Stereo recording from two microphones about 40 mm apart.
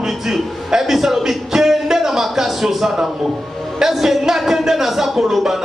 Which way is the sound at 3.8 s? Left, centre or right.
Centre.